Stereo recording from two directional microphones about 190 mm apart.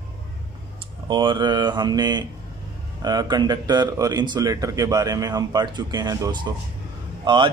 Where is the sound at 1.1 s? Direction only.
25° right (ahead or behind).